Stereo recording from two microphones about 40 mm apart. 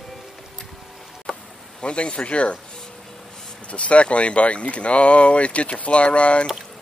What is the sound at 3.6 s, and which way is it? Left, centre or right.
Speech, left.